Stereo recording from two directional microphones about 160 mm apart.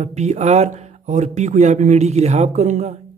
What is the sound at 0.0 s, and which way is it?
Speech, 45° right (ahead or behind).